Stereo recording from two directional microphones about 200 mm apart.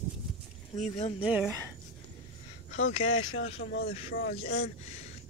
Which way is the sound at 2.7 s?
90° left.